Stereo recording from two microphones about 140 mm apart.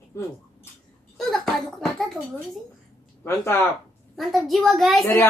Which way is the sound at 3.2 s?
15° left (ahead or behind).